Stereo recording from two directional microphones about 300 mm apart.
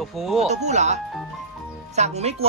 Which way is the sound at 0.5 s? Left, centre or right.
Right.